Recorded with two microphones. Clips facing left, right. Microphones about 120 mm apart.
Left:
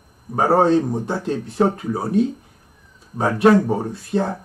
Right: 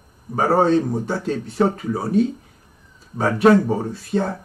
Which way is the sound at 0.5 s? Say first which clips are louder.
Left 1 dB; centre (ahead or behind).